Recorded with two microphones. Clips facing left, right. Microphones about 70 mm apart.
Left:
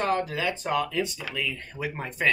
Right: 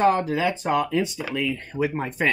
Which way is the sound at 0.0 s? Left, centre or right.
Centre.